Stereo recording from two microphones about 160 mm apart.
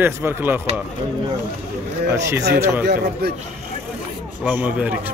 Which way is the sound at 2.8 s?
90° right.